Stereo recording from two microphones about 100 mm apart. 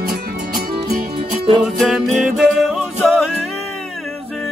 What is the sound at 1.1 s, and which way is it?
Music, 70° right (ahead or behind).